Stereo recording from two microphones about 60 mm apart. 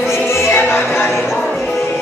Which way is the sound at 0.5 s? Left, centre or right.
Left.